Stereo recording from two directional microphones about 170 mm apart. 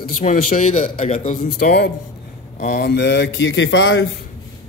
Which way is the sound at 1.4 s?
65° left (ahead or behind).